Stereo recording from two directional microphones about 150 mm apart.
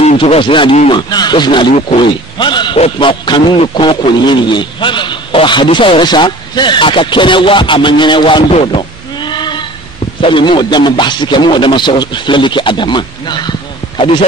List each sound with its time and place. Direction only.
0.2 s a man's voice: 35° left (ahead or behind)